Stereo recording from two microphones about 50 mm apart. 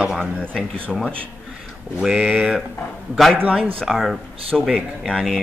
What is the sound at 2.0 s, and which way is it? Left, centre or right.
Speech, centre.